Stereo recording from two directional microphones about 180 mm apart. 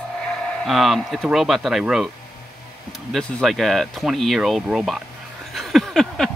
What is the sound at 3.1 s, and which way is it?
Speech, centre (ahead or behind).